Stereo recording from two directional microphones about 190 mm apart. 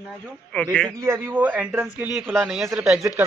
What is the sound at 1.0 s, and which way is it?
A man's voice, 10° right (ahead or behind).